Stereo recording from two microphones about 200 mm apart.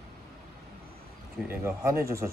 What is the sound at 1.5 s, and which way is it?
Speech, 15° right (ahead or behind).